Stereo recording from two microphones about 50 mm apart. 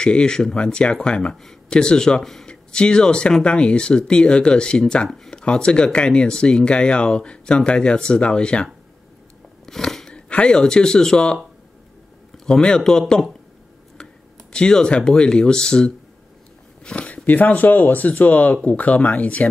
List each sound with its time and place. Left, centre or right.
0.0 s speech: centre
9.7 s a sound: centre
10.1 s speech: left
12.4 s speech: centre
14.5 s speech: centre
16.8 s a sound: centre
17.1 s speech: left